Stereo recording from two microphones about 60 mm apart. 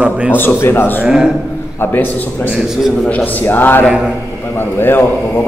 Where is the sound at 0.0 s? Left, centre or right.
Right.